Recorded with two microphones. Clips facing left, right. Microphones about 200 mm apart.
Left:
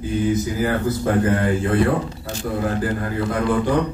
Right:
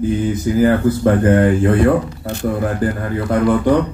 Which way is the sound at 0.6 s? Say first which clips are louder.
Right 10 dB; 60° right (ahead or behind).